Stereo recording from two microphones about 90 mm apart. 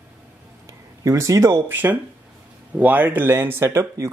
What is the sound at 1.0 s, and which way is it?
Speech, 35° right (ahead or behind).